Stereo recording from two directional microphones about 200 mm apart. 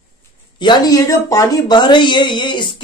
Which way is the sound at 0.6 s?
20° left (ahead or behind).